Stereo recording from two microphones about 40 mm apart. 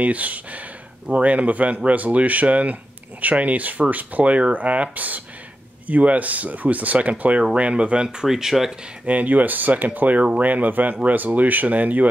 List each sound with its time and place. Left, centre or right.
0.0 s speech: right
8.2 s speech: centre
9.0 s speech: right